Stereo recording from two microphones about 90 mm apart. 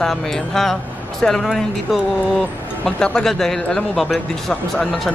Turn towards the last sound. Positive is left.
turn(degrees=5)  # may be behind; listen again after turning